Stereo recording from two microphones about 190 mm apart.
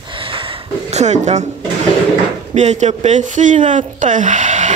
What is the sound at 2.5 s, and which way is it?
Speech, 35° right (ahead or behind).